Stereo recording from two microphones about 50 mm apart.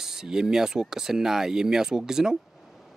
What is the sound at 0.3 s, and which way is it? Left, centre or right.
Speech, centre.